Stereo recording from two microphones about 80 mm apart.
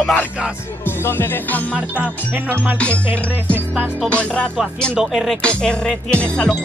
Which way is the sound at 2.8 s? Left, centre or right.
Centre.